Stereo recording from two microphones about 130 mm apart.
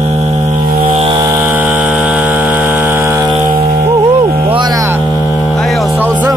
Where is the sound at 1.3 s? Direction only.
15° right (ahead or behind).